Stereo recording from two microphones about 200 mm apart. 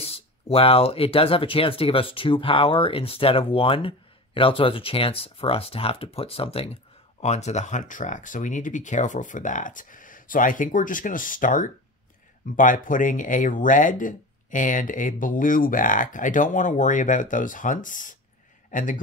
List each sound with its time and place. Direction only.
0.0 s a man's voice: 30° left (ahead or behind)